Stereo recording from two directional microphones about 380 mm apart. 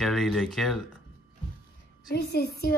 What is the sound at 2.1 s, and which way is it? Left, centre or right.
Speech, left.